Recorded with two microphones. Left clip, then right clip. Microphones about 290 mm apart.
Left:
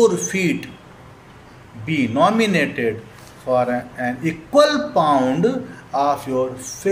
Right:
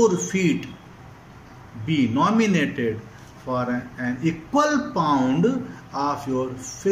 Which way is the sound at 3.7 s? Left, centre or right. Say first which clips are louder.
Left 5 dB; left.